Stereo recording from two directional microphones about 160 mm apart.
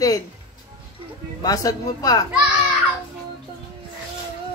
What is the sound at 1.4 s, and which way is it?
Speech, 20° left (ahead or behind).